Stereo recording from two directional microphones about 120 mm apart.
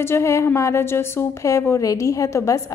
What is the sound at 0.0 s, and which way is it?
A woman's voice, 20° left (ahead or behind).